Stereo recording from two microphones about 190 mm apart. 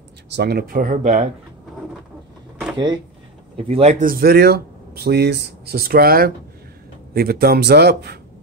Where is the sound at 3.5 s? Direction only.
35° right (ahead or behind).